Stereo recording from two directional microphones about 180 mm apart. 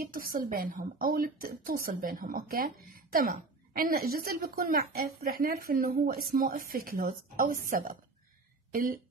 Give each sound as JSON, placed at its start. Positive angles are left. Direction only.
{"t": 0.0, "sound": "speech", "side_deg": -50}